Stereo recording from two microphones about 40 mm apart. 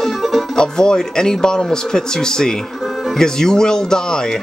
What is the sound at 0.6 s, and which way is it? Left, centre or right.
Speech, centre.